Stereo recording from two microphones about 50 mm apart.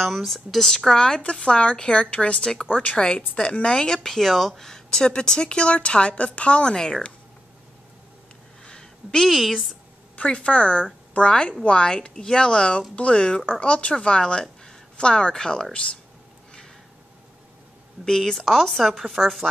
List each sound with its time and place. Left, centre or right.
0.0 s speech: centre
2.7 s a woman's voice: left
8.6 s a sound: centre
9.3 s speech: centre
10.1 s a woman's voice: left
18.0 s speech: centre